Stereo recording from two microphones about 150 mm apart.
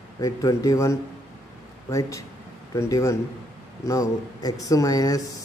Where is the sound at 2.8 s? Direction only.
20° left (ahead or behind).